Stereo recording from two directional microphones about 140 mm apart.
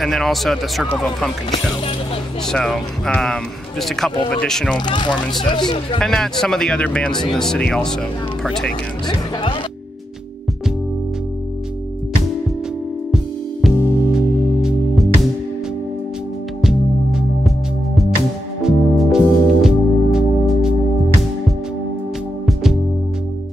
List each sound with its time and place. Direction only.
0.0 s speech: centre (ahead or behind)
2.4 s speech: 5° left (ahead or behind)
4.7 s speech: 30° left (ahead or behind)
5.9 s speech: 5° left (ahead or behind)
9.0 s speech: 35° left (ahead or behind)
13.1 s music: centre (ahead or behind)
16.6 s music: centre (ahead or behind)
18.6 s music: 5° right (ahead or behind)
22.5 s music: centre (ahead or behind)